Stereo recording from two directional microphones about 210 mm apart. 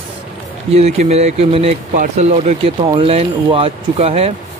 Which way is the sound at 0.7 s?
30° right (ahead or behind).